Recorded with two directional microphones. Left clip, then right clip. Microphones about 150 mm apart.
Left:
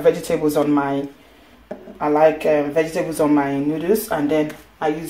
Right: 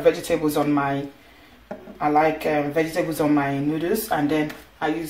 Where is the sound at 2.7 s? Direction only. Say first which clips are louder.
Left 3 dB; 45° left (ahead or behind).